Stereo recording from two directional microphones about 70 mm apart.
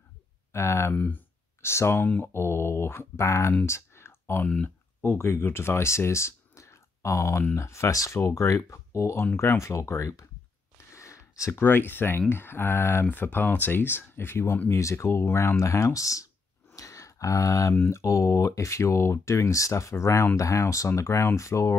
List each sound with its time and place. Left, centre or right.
0.5 s speech: left
0.9 s speech: left
1.6 s speech: left
3.6 s clicking: left
5.0 s speech: left
10.9 s a sound: left
11.6 s speech: left
16.7 s a sound: left
17.7 s speech: left